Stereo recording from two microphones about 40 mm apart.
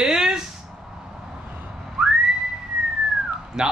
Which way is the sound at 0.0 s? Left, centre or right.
Centre.